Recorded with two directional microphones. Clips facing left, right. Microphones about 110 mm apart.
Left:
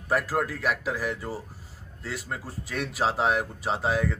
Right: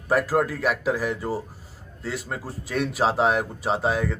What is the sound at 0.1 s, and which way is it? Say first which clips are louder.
Speech: right 5 dB; 10° right (ahead or behind).